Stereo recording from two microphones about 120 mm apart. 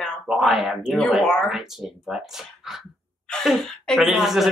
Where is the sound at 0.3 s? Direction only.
Centre (ahead or behind).